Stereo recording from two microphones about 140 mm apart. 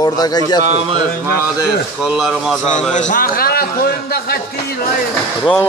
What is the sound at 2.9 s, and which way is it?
A man's voice, 65° left (ahead or behind).